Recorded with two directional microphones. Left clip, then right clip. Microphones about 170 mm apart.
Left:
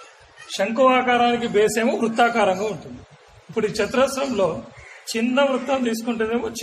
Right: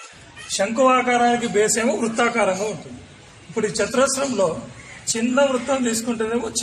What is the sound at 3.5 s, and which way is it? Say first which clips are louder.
Speech: even; 25° left (ahead or behind).